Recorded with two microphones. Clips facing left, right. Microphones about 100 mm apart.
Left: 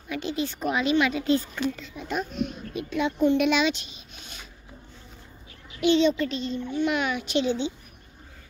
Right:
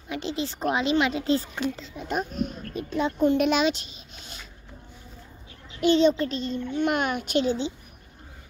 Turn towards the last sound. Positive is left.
turn(degrees=-40)  # may be behind; listen again after turning